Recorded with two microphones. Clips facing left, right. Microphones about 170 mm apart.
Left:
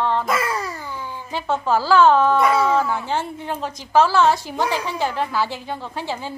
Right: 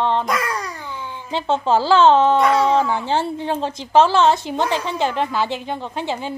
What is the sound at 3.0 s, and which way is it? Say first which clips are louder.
A woman's voice: right 4 dB; 30° right (ahead or behind).